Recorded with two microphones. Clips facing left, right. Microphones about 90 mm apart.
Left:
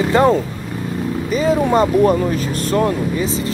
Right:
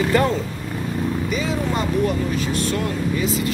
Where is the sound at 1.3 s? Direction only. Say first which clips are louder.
Left 13 dB; 40° left (ahead or behind).